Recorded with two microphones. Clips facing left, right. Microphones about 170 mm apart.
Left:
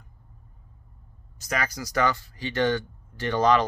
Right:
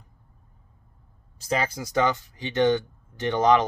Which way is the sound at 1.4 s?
25° right (ahead or behind).